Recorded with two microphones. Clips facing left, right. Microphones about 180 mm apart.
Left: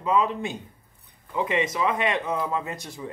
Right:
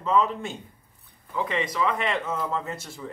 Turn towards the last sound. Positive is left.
turn(degrees=15)  # may be behind; listen again after turning